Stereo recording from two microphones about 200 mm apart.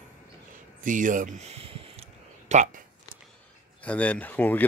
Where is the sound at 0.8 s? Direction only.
40° right (ahead or behind).